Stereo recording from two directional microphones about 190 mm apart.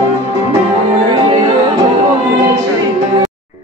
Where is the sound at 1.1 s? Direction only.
25° right (ahead or behind).